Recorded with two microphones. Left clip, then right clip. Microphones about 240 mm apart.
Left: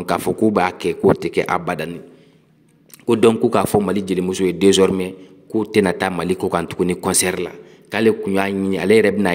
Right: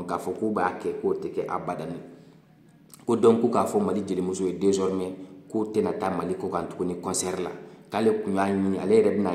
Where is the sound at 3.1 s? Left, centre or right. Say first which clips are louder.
Left 6 dB; left.